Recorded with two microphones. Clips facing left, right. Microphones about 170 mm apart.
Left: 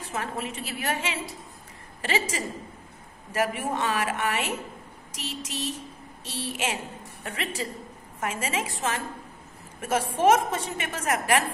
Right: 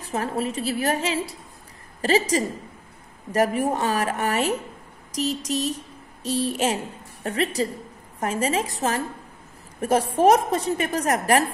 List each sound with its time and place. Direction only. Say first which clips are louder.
0.0 s a woman's voice: right 6 dB; 35° right (ahead or behind)